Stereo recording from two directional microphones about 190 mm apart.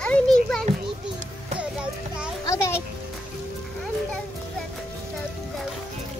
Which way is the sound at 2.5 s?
15° left (ahead or behind).